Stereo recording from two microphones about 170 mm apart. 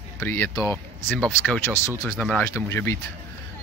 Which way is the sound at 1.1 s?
Centre (ahead or behind).